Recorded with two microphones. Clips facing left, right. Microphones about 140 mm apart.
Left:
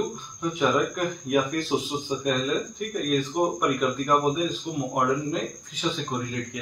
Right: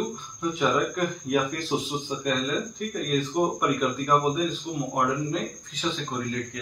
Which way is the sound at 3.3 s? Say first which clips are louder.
Right 1 dB; centre (ahead or behind).